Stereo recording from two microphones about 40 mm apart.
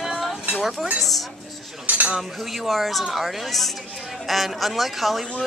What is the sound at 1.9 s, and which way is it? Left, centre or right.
Cutlery, right.